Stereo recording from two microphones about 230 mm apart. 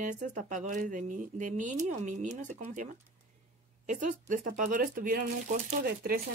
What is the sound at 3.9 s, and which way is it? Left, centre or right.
A woman's voice, right.